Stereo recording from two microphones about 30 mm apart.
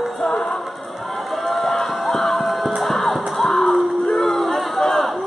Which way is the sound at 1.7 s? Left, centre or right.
Centre.